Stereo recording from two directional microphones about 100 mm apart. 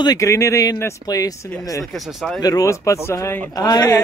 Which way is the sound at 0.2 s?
30° left (ahead or behind).